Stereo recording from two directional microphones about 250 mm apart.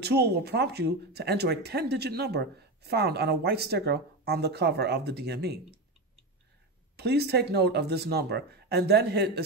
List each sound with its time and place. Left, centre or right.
0.0 s speech: right
7.0 s speech: right